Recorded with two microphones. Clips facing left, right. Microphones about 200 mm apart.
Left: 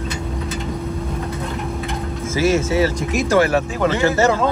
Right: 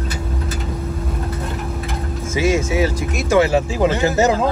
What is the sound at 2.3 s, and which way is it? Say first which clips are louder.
Speech: left 1 dB; 15° right (ahead or behind).